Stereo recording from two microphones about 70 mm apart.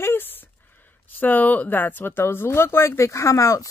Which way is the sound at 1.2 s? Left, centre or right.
Left.